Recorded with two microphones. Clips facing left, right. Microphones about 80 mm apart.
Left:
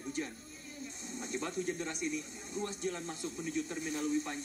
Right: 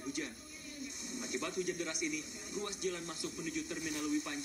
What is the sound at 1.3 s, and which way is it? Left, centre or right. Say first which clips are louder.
Speech: left 1 dB; left.